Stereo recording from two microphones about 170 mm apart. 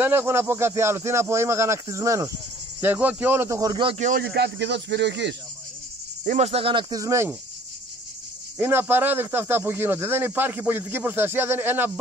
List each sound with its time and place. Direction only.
0.0 s a man's voice: 10° right (ahead or behind)
4.0 s speech: 60° right (ahead or behind); by 5.3 s 90° right
6.2 s speech: 40° right (ahead or behind); by 7.3 s 15° right (ahead or behind)
8.5 s a man's voice: 10° right (ahead or behind)